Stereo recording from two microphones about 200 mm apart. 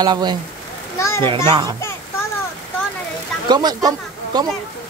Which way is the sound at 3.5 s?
20° right (ahead or behind).